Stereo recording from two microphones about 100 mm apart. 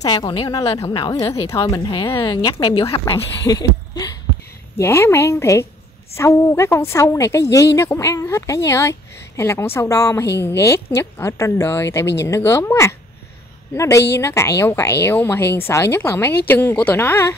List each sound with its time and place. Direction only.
0.0 s speech: 40° left (ahead or behind)
0.6 s a woman's voice: 30° left (ahead or behind)
1.9 s speech: 55° left (ahead or behind)
2.7 s speech: 65° left (ahead or behind)
3.4 s a sound: 40° left (ahead or behind)
4.7 s a woman's voice: 25° left (ahead or behind)